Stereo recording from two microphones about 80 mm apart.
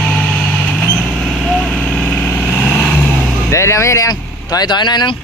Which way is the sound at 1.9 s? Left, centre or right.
Centre.